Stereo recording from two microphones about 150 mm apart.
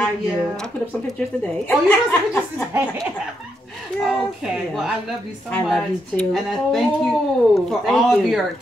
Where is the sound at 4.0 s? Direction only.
5° right (ahead or behind).